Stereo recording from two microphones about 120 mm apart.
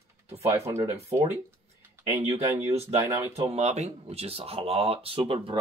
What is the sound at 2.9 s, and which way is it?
Speech, 25° right (ahead or behind).